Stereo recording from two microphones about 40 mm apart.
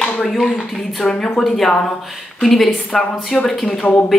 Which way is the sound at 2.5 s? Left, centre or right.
Centre.